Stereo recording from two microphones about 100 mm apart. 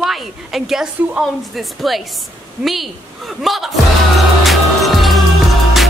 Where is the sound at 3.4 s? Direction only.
Centre (ahead or behind).